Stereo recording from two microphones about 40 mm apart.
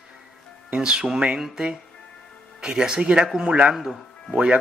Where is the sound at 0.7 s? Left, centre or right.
Right.